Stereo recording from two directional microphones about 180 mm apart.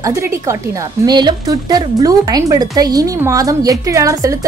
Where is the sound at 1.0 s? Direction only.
25° right (ahead or behind).